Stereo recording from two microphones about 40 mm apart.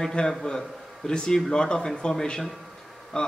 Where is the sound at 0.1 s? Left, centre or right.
Centre.